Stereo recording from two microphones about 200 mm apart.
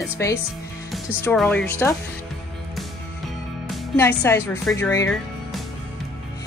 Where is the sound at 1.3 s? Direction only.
5° left (ahead or behind).